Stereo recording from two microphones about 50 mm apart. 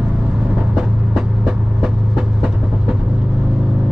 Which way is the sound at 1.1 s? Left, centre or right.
Centre.